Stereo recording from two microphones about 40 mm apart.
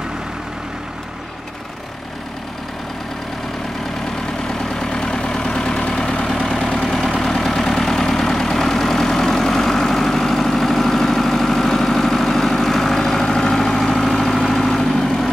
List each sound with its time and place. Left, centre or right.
4.5 s vehicle: centre
6.2 s vehicle: centre